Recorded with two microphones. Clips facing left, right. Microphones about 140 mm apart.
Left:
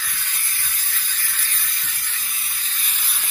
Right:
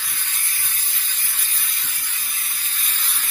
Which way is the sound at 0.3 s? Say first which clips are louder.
Even; 20° right (ahead or behind).